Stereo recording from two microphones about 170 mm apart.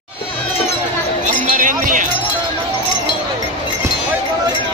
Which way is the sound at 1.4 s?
50° right (ahead or behind).